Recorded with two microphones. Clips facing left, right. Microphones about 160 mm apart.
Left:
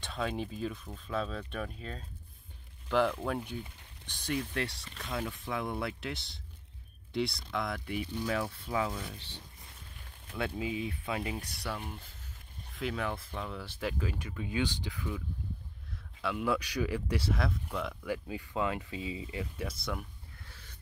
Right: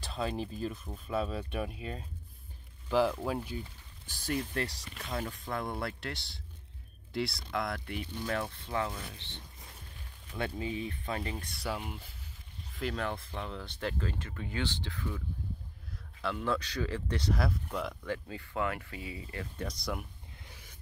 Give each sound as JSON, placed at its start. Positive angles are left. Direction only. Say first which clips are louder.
{"t": 0.0, "sound": "speech", "louder": "even", "side_deg": 0}
{"t": 11.6, "sound": "speech", "louder": "right 5 dB", "side_deg": -10}
{"t": 18.0, "sound": "speech", "louder": "left 1 dB", "side_deg": 15}
{"t": 19.4, "sound": "speech", "louder": "even", "side_deg": 5}
{"t": 20.4, "sound": "a sound", "louder": "right 2 dB", "side_deg": -15}